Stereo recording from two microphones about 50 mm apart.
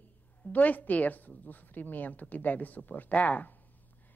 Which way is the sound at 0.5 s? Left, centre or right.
Left.